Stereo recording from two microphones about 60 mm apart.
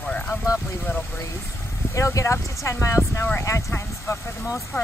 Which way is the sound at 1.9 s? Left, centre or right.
Left.